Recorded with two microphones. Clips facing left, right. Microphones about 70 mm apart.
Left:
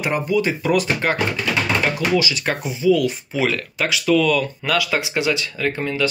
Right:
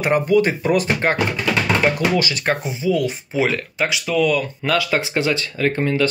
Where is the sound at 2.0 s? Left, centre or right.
Right.